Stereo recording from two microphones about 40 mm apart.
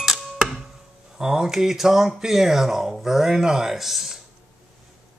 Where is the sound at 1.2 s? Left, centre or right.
Centre.